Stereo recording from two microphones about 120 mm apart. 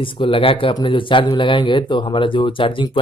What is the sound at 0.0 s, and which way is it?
A man's voice, 45° left (ahead or behind).